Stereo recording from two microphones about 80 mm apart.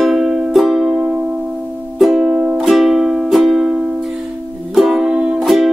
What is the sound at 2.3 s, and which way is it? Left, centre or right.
Music, centre.